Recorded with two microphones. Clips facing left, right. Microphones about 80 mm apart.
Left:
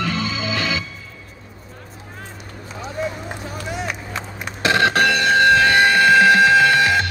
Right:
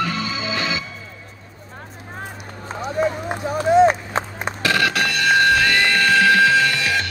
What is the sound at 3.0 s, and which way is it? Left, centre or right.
Run, right.